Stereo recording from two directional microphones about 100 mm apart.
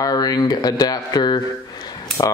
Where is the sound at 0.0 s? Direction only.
40° left (ahead or behind).